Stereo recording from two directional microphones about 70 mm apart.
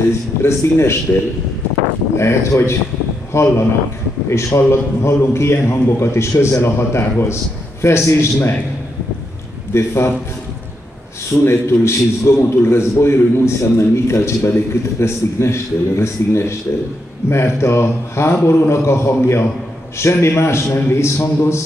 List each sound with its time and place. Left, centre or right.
0.4 s a man's voice: left
2.1 s a man's voice: left
9.8 s a man's voice: left
11.4 s a man's voice: left